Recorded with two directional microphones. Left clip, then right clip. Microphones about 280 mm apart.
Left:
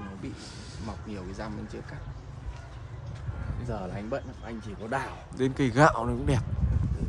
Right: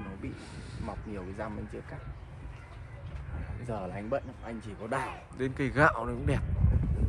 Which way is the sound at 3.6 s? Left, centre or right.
Right.